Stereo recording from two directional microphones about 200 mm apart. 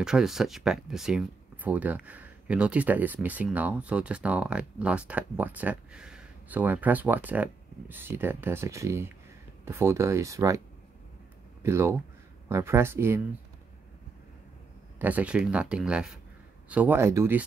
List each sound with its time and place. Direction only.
0.0 s speech: centre (ahead or behind)
11.6 s speech: 15° right (ahead or behind)
15.0 s speech: 10° right (ahead or behind)